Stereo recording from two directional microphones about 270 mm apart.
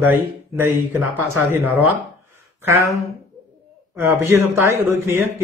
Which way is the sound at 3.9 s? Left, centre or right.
Centre.